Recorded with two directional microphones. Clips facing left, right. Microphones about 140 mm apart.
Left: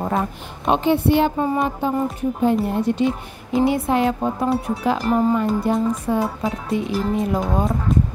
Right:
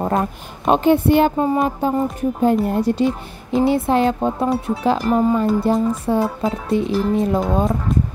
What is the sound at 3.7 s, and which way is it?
Music, 30° right (ahead or behind).